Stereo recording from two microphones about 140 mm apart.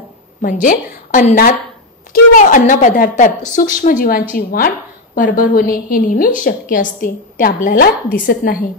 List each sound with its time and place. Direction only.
0.4 s a woman's voice: 75° left (ahead or behind)
2.3 s a woman's voice: 70° left (ahead or behind)